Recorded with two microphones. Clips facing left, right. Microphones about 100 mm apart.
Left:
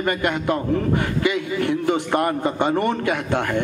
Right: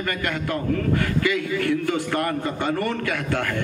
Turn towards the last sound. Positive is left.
turn(degrees=20)  # may be behind; listen again after turning